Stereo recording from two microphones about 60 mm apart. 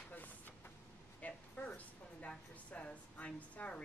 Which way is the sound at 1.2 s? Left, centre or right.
Left.